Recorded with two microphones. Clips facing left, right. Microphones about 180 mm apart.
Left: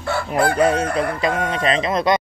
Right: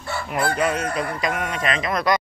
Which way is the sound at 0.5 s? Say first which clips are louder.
Left 5 dB; 30° left (ahead or behind).